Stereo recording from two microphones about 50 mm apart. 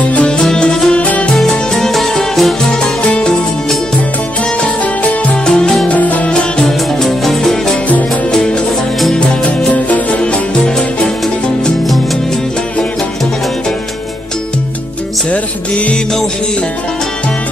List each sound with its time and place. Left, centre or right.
0.1 s music: left
0.9 s music: left
1.3 s music: centre
3.0 s music: left
4.6 s music: left
5.4 s music: centre
5.9 s music: left
7.0 s music: centre
9.7 s music: left
15.2 s music: left